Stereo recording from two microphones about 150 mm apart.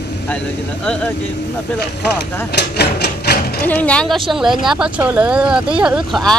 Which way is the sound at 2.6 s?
90° left.